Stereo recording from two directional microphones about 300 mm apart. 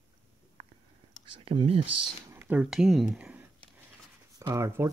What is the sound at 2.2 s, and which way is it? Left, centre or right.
Speech, centre.